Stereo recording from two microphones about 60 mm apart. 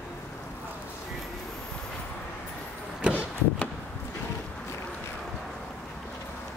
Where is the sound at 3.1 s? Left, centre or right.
Left.